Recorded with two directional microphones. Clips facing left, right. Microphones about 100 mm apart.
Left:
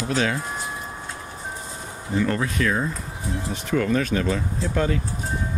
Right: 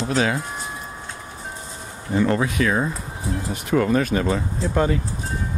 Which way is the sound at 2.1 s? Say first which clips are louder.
Right 3 dB; 20° right (ahead or behind).